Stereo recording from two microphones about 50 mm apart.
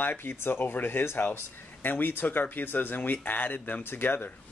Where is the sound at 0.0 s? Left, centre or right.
Left.